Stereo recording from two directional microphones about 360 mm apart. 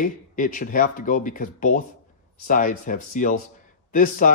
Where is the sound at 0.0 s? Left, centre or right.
Left.